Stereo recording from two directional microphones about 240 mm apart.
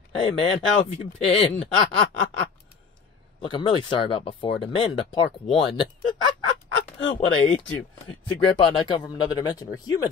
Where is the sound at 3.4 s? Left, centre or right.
Centre.